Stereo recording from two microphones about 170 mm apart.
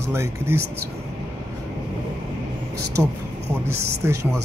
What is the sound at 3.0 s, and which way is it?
Speech, 15° right (ahead or behind).